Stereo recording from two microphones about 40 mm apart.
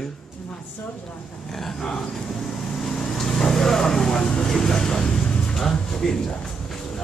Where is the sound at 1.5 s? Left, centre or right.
Centre.